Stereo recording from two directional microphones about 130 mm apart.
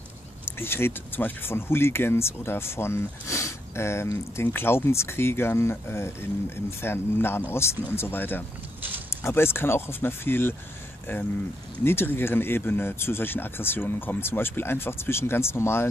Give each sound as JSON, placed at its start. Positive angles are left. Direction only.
{"t": 0.5, "sound": "speech", "side_deg": 20}